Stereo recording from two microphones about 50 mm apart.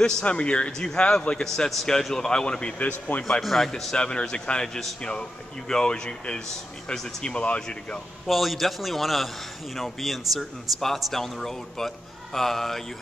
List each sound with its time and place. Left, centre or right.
0.0 s a man's voice: left
3.1 s a man's voice: left
3.4 s a man's voice: centre
3.9 s a man's voice: centre
5.7 s a man's voice: centre
8.3 s a man's voice: centre